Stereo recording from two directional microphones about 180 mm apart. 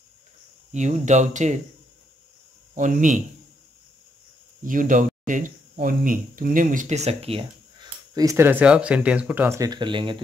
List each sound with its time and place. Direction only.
0.7 s speech: 40° right (ahead or behind)
2.7 s speech: 45° right (ahead or behind)
4.6 s speech: 45° right (ahead or behind); by 10.1 s 25° right (ahead or behind)